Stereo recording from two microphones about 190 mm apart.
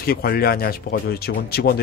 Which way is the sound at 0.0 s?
50° left (ahead or behind).